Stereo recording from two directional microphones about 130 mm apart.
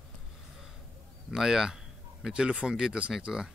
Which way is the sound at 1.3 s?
5° right (ahead or behind).